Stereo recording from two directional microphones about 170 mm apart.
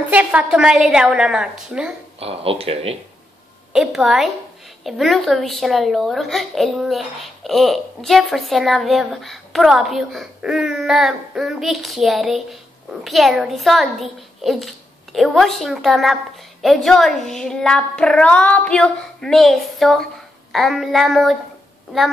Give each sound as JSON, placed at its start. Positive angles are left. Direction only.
{"t": 0.0, "sound": "a woman's voice", "side_deg": -10}
{"t": 2.1, "sound": "speech", "side_deg": -35}
{"t": 3.7, "sound": "a woman's voice", "side_deg": -5}